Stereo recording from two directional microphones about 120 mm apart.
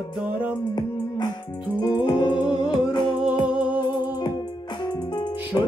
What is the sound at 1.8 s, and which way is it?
Music, 35° left (ahead or behind).